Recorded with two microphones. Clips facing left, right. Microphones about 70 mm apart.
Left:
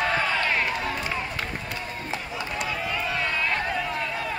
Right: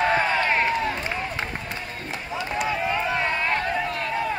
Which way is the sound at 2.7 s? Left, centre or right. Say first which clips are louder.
Right 5 dB; right.